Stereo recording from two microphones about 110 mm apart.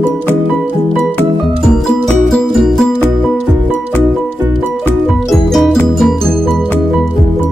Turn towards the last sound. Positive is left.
turn(degrees=5)  # may be behind; listen again after turning